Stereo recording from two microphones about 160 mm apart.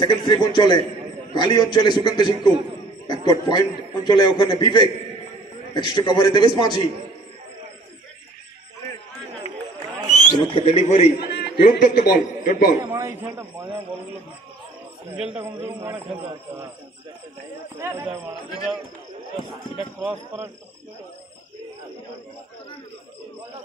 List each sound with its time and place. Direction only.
0.0 s a man's voice: 30° left (ahead or behind)
10.3 s a man's voice: 35° left (ahead or behind)
11.3 s a man's voice: 65° left (ahead or behind)
12.9 s a man's voice: 15° right (ahead or behind)
15.1 s a man's voice: 10° right (ahead or behind)
17.7 s a man's voice: 15° right (ahead or behind)
19.5 s speech: centre (ahead or behind)